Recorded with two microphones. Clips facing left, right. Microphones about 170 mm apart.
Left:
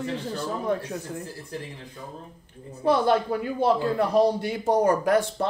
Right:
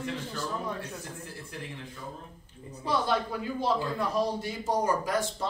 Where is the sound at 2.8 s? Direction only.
55° left (ahead or behind).